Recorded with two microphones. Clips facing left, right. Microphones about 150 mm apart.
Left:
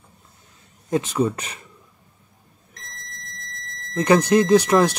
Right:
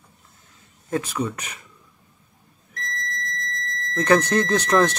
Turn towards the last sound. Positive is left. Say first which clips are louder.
# left 4 dB
turn(degrees=10)  # may be behind; listen again after turning